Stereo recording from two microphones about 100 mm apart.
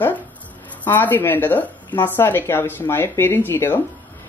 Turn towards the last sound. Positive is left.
turn(degrees=20)  # may be behind; listen again after turning